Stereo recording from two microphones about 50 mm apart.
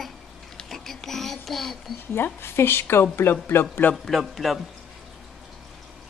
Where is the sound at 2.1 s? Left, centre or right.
Left.